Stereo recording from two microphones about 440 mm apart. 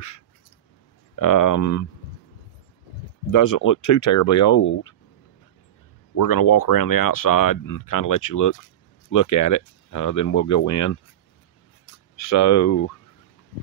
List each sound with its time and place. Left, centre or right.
1.1 s speech: left
3.3 s speech: left
6.1 s speech: left
12.2 s speech: left